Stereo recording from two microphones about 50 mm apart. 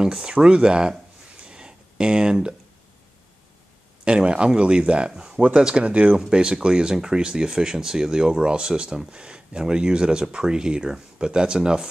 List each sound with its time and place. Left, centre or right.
0.0 s speech: centre
1.4 s a sound: centre
4.0 s speech: centre
6.1 s speech: centre